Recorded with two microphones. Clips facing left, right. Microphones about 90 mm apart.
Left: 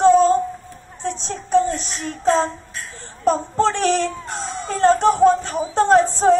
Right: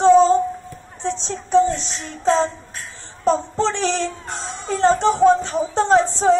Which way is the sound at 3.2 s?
50° left (ahead or behind).